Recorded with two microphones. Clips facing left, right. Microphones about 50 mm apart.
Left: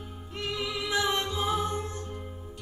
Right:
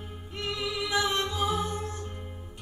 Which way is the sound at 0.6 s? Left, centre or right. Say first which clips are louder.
Right 1 dB; left.